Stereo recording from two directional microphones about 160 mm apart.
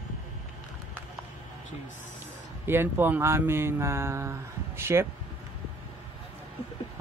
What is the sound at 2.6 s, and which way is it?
Speech, 15° right (ahead or behind).